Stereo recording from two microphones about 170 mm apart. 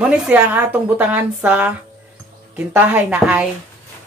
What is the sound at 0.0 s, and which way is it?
Speech, 10° right (ahead or behind).